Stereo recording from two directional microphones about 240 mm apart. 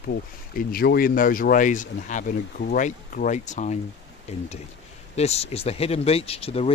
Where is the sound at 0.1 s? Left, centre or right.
Left.